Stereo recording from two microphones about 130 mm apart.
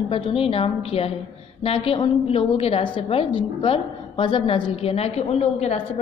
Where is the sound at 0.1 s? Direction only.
45° left (ahead or behind).